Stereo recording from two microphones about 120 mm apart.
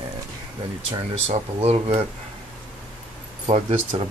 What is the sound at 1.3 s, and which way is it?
Speech, 65° right (ahead or behind).